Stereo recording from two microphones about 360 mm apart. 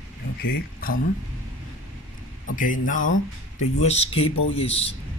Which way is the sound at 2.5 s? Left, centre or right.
Left.